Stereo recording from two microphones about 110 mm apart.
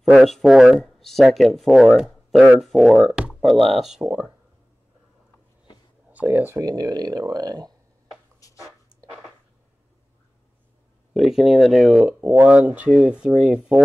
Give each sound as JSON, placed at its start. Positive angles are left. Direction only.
{"t": 0.2, "sound": "speech", "side_deg": 0}
{"t": 6.1, "sound": "speech", "side_deg": -20}
{"t": 6.6, "sound": "speech", "side_deg": -40}
{"t": 8.4, "sound": "a sound", "side_deg": 30}
{"t": 11.1, "sound": "speech", "side_deg": -5}